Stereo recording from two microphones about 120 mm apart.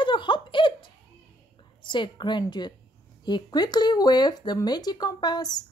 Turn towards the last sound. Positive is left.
turn(degrees=35)  # may be behind; listen again after turning